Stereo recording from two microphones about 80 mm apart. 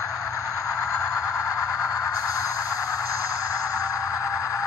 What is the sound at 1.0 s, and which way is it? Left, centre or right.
Music, left.